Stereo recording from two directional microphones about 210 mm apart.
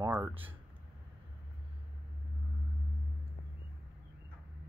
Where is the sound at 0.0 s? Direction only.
10° right (ahead or behind).